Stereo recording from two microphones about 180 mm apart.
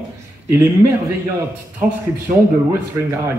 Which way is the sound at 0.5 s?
15° right (ahead or behind).